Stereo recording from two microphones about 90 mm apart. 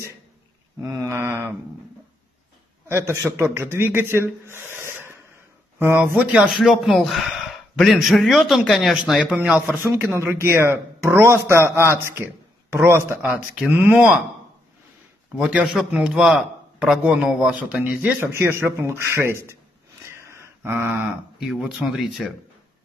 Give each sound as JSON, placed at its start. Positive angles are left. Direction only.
{"t": 0.7, "sound": "a sound", "side_deg": -35}
{"t": 3.2, "sound": "a man's voice", "side_deg": -25}
{"t": 6.1, "sound": "speech", "side_deg": -15}
{"t": 6.5, "sound": "a man's voice", "side_deg": 0}
{"t": 9.9, "sound": "a man's voice", "side_deg": -30}
{"t": 13.3, "sound": "speech", "side_deg": -10}
{"t": 13.7, "sound": "a man's voice", "side_deg": -25}
{"t": 15.9, "sound": "speech", "side_deg": -5}
{"t": 18.2, "sound": "a man's voice", "side_deg": -30}
{"t": 20.1, "sound": "a sound", "side_deg": -30}
{"t": 20.9, "sound": "a man's voice", "side_deg": -10}